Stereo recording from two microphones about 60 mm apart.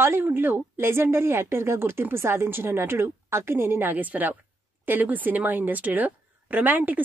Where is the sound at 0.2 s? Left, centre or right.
Right.